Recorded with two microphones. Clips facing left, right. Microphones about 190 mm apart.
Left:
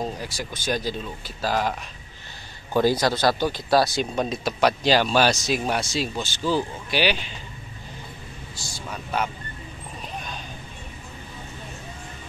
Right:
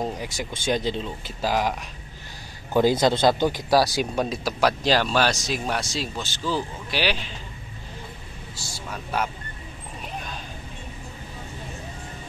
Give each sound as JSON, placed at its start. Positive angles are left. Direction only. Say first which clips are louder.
{"t": 0.0, "sound": "speech", "louder": "right 1 dB", "side_deg": -20}
{"t": 8.8, "sound": "speech", "louder": "even", "side_deg": -5}